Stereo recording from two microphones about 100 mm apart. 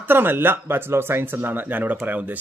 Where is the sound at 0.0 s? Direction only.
20° right (ahead or behind).